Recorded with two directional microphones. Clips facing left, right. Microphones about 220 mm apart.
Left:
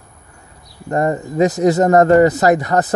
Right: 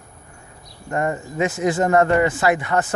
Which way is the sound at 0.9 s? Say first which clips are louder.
Left 6 dB; 35° left (ahead or behind).